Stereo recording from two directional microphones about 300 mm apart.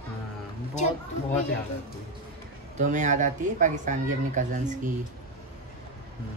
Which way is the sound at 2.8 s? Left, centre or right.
Right.